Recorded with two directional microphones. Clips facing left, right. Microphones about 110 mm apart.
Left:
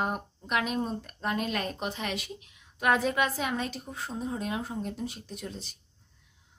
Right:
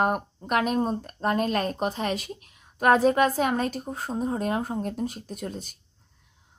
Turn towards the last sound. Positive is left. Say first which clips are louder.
# right 5 dB
turn(degrees=-50)  # may be behind; listen again after turning